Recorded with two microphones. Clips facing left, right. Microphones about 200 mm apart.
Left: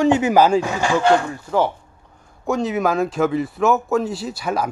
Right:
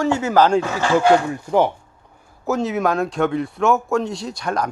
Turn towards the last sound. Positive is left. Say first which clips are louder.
# left 1 dB
turn(degrees=5)  # may be behind; listen again after turning